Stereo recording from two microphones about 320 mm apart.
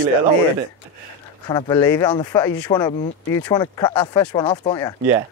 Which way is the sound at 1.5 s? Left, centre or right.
Centre.